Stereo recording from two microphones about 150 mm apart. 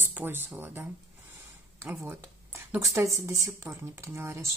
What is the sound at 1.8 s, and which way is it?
Speech, 15° right (ahead or behind).